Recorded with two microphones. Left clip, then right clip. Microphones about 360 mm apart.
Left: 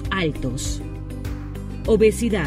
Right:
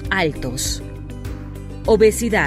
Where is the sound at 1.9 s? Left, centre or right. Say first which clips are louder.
Right 3 dB; centre.